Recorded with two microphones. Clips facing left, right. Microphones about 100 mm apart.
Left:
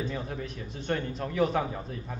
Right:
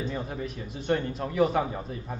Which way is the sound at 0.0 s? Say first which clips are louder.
Right 2 dB; 10° right (ahead or behind).